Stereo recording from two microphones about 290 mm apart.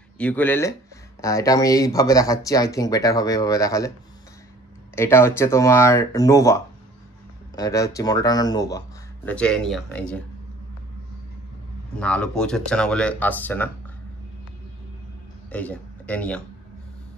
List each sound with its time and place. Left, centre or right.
0.2 s speech: centre
4.9 s speech: centre
12.0 s speech: centre
15.5 s a man's voice: centre